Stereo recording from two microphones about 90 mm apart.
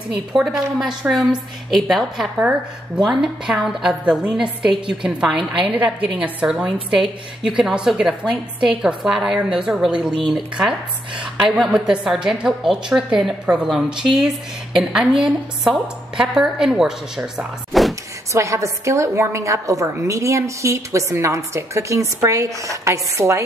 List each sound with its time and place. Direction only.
0.3 s a woman's voice: 5° right (ahead or behind)
17.7 s vehicle: centre (ahead or behind)
18.3 s a woman's voice: 35° right (ahead or behind)